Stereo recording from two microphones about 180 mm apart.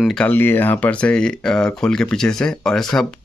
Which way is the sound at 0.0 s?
5° left (ahead or behind).